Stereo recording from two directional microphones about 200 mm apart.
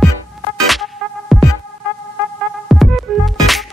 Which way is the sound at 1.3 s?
Centre (ahead or behind).